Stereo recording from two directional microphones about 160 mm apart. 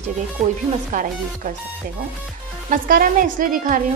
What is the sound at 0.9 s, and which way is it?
Speech, 55° right (ahead or behind).